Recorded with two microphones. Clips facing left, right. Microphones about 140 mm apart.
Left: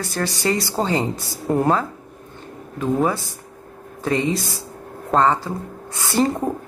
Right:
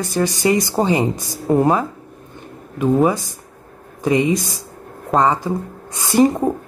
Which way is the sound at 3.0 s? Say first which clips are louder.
Right 4 dB; 15° right (ahead or behind).